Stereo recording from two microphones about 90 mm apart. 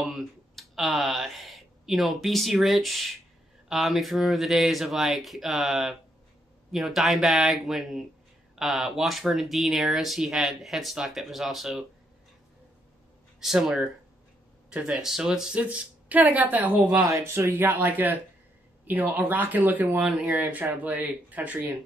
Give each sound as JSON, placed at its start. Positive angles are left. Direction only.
{"t": 0.0, "sound": "speech", "side_deg": 0}
{"t": 13.4, "sound": "speech", "side_deg": -5}
{"t": 20.1, "sound": "speech", "side_deg": -5}